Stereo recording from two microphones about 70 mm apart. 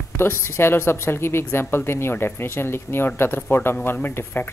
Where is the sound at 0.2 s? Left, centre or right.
Left.